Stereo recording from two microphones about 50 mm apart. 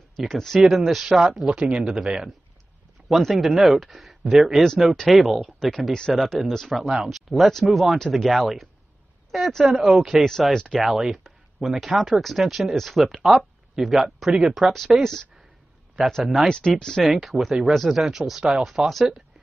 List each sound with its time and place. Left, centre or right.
0.3 s speech: centre
1.7 s speech: right
2.0 s speech: centre
10.8 s speech: centre
16.0 s speech: centre
16.4 s speech: centre
17.0 s speech: centre